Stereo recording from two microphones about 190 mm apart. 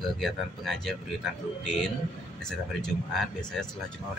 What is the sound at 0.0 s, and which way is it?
Speech, centre (ahead or behind).